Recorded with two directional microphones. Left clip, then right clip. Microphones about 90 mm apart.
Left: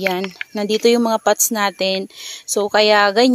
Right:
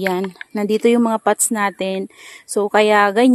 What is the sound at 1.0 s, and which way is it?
Speech, 15° right (ahead or behind).